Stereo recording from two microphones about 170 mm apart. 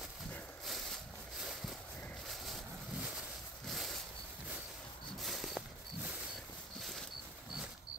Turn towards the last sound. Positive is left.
turn(degrees=0)  # may be behind; listen again after turning